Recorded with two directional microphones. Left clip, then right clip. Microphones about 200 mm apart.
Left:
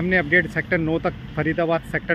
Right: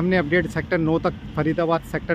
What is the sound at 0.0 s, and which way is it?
Speech, 15° right (ahead or behind).